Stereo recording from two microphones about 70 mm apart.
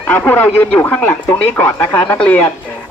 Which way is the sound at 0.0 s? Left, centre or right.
Left.